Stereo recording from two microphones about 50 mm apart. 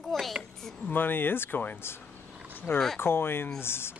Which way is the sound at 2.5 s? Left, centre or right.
Left.